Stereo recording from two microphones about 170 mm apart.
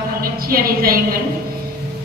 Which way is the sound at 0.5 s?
60° right (ahead or behind).